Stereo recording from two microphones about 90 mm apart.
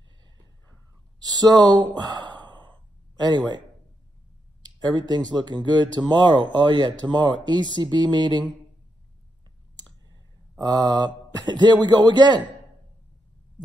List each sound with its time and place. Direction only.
1.2 s a man's voice: 45° right (ahead or behind)
4.6 s speech: 50° right (ahead or behind)
9.8 s clicking: 50° right (ahead or behind)
10.6 s a man's voice: 45° right (ahead or behind)